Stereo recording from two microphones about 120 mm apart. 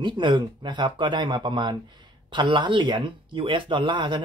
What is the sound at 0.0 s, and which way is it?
Speech, 40° right (ahead or behind).